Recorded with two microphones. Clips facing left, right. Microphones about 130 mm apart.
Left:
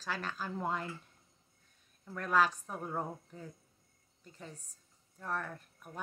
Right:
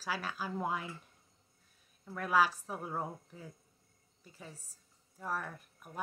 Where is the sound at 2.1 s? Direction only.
5° right (ahead or behind).